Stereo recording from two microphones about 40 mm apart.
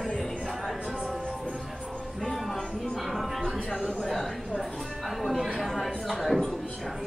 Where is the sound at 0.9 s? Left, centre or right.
Centre.